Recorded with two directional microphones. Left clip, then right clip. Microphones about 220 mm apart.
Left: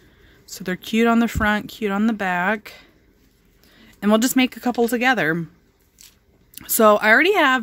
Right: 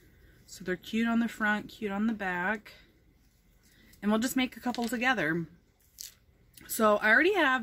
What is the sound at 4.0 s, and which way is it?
Speech, 50° left (ahead or behind).